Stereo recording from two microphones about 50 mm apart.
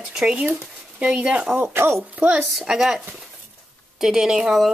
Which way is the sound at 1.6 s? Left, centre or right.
Right.